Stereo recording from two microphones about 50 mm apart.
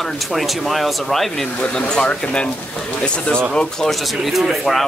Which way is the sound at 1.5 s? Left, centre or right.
Centre.